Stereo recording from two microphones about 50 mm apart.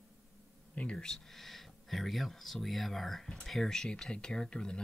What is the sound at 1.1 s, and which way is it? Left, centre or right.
Speech, centre.